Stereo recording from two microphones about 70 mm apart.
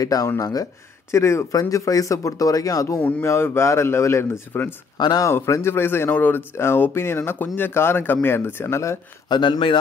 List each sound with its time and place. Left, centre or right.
0.0 s speech: left
1.1 s speech: left
1.5 s speech: left
3.3 s speech: left
4.5 s speech: left
4.9 s speech: left
5.3 s speech: left
9.3 s speech: left